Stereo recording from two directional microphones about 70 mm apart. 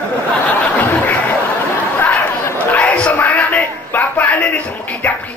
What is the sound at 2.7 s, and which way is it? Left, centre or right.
Music, centre.